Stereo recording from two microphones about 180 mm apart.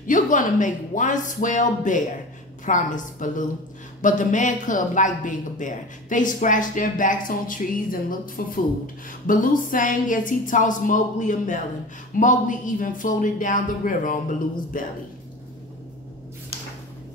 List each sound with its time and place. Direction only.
0.0 s speech: 45° left (ahead or behind)